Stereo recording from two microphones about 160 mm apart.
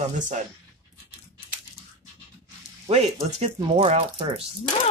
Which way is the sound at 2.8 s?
35° right (ahead or behind).